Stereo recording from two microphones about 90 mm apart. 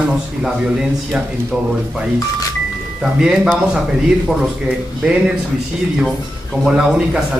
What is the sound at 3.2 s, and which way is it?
Speech, 5° right (ahead or behind).